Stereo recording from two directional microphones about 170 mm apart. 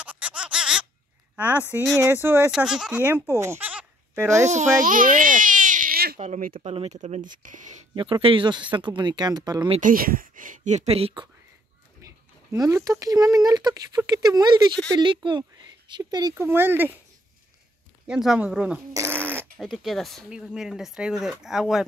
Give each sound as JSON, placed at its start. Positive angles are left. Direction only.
{"t": 0.0, "sound": "a sound", "side_deg": -10}
{"t": 1.3, "sound": "speech", "side_deg": -10}
{"t": 4.5, "sound": "baby cry", "side_deg": -50}
{"t": 6.1, "sound": "speech", "side_deg": -45}
{"t": 7.9, "sound": "speech", "side_deg": -30}
{"t": 9.8, "sound": "speech", "side_deg": -55}
{"t": 12.5, "sound": "speech", "side_deg": -20}
{"t": 18.0, "sound": "speech", "side_deg": -5}
{"t": 18.9, "sound": "dog", "side_deg": -15}
{"t": 19.6, "sound": "speech", "side_deg": 0}